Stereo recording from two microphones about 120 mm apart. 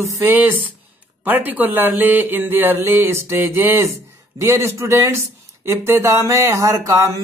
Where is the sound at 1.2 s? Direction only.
15° right (ahead or behind).